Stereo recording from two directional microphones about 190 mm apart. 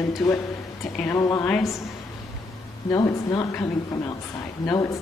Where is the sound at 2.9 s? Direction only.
20° left (ahead or behind).